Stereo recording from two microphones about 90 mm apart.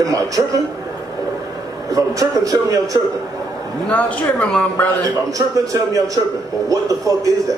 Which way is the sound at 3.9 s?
15° left (ahead or behind).